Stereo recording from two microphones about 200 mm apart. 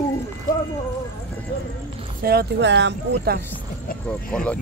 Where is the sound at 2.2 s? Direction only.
55° right (ahead or behind).